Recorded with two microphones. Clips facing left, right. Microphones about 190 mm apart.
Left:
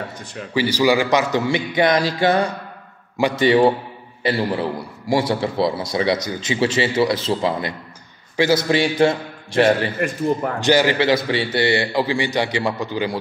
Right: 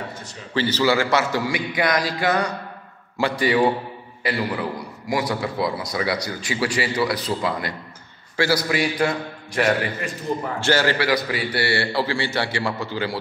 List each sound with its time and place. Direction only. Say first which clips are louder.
0.6 s a man's voice: left 3 dB; 10° left (ahead or behind); by 9.8 s 25° left (ahead or behind)
9.9 s a man's voice: left 6 dB; 55° left (ahead or behind)
10.6 s a man's voice: left 4 dB; 15° left (ahead or behind)